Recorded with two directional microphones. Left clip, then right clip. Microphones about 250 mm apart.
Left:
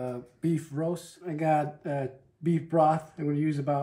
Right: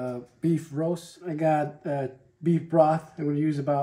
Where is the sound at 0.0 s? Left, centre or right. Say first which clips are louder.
Right 3 dB; centre.